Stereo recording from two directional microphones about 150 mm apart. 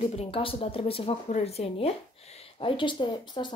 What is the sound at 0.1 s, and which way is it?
Speech, 40° left (ahead or behind).